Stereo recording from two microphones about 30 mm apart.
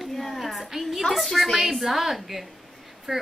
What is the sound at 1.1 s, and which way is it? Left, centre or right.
A woman's voice, centre.